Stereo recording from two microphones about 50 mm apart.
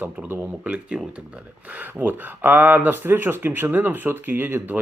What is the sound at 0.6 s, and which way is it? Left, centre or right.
Speech, right.